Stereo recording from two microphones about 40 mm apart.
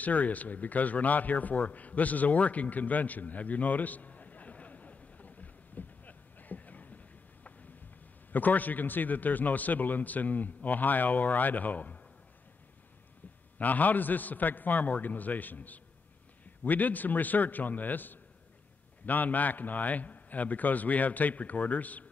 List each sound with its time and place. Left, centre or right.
0.0 s a sound: left
8.3 s a man's voice: left
13.6 s a man's voice: left